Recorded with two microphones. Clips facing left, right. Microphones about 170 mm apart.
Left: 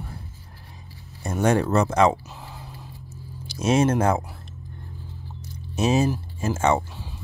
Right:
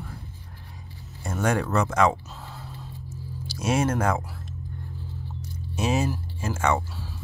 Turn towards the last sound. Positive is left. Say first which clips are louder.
# left 3 dB
turn(degrees=25)  # may be behind; listen again after turning